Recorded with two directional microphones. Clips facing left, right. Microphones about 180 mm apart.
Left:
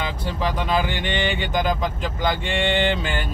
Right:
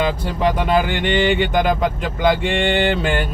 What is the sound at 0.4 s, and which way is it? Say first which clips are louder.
Speech: right 5 dB; 60° right (ahead or behind).